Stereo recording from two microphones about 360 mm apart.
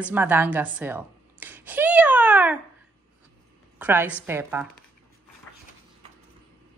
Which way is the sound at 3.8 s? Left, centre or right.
Centre.